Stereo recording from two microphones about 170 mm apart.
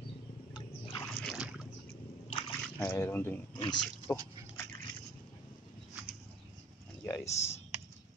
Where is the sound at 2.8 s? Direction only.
15° left (ahead or behind).